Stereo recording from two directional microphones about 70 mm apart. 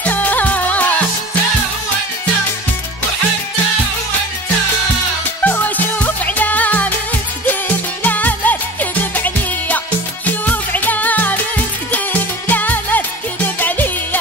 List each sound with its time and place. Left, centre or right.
0.0 s music: left
5.4 s music: left